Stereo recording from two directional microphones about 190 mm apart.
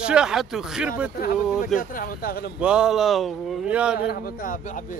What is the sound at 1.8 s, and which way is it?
Speech, 50° left (ahead or behind).